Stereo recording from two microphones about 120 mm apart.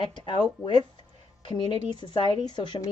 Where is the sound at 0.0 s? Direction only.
40° left (ahead or behind).